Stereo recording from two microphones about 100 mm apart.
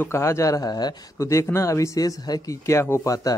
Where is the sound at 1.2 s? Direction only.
30° left (ahead or behind).